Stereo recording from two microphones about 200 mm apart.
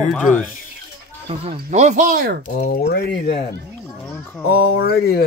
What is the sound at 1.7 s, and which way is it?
Speech, 35° right (ahead or behind).